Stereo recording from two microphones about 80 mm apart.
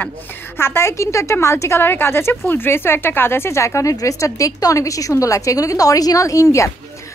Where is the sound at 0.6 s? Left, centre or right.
Left.